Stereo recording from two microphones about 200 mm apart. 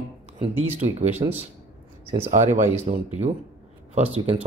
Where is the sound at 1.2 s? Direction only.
25° right (ahead or behind).